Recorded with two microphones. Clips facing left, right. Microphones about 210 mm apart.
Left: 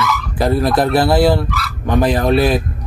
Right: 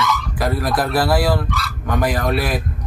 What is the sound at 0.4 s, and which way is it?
Speech, 25° left (ahead or behind).